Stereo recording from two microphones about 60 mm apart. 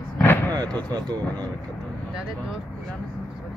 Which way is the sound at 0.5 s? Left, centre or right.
Right.